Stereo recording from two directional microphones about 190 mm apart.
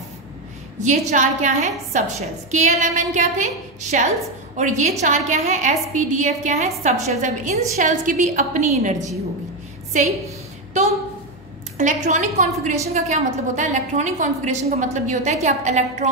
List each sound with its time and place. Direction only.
0.7 s a woman's voice: 40° right (ahead or behind)
11.8 s a woman's voice: 40° right (ahead or behind)